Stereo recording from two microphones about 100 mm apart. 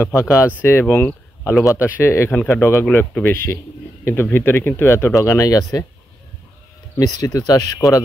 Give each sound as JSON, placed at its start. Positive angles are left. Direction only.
{"t": 0.0, "sound": "speech", "side_deg": 30}
{"t": 1.6, "sound": "speech", "side_deg": 30}
{"t": 7.0, "sound": "speech", "side_deg": 35}